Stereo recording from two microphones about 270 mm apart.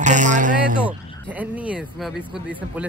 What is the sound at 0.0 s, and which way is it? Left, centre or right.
Speech, right.